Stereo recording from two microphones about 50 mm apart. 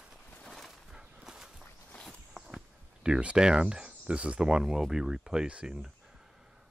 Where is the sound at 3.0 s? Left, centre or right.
Right.